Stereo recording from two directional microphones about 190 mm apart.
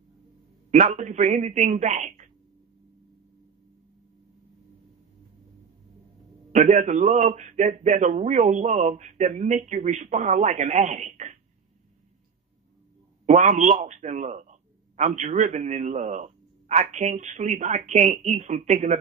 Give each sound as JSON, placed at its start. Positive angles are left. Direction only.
{"t": 0.7, "sound": "a man's voice", "side_deg": -40}
{"t": 6.5, "sound": "a man's voice", "side_deg": -40}
{"t": 13.2, "sound": "a man's voice", "side_deg": -40}